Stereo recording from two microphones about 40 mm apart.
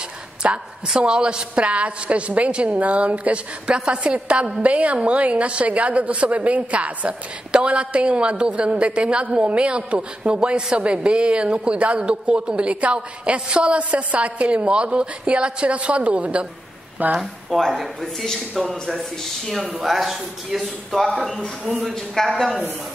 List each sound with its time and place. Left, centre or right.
0.4 s a woman's voice: right
0.9 s a woman's voice: right
17.2 s speech: centre
21.9 s speech: centre